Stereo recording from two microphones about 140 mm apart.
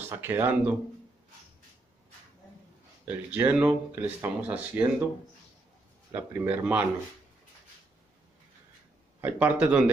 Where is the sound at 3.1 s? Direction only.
15° right (ahead or behind).